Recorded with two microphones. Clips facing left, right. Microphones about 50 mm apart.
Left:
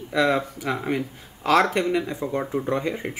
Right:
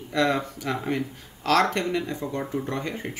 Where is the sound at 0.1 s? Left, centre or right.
Centre.